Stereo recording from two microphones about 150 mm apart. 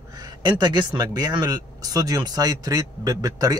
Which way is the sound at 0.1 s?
30° right (ahead or behind).